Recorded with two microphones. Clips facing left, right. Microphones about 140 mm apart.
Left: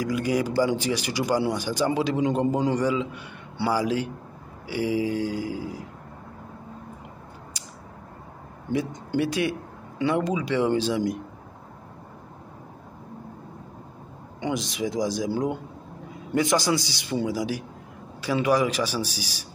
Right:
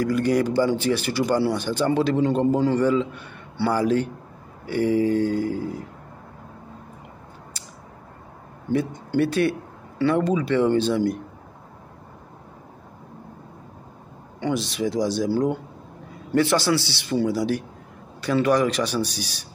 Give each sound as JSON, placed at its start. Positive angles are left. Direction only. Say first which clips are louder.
{"t": 0.0, "sound": "a man's voice", "louder": "right 4 dB", "side_deg": 10}
{"t": 8.7, "sound": "a man's voice", "louder": "right 3 dB", "side_deg": 15}
{"t": 14.7, "sound": "a man's voice", "louder": "right 3 dB", "side_deg": 15}
{"t": 19.1, "sound": "speech", "louder": "right 3 dB", "side_deg": -65}